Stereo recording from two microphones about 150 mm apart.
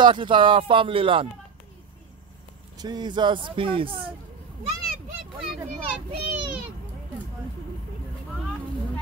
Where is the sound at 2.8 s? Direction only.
25° right (ahead or behind).